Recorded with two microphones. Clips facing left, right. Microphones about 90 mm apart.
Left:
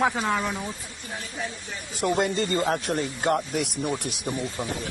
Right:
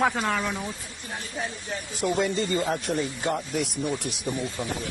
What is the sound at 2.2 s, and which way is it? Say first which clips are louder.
Speech: even; 55° left (ahead or behind).